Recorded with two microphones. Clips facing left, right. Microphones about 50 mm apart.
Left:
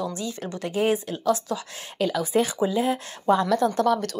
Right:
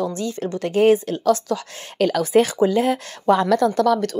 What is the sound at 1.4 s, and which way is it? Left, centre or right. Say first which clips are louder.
A woman's voice: right 5 dB; right.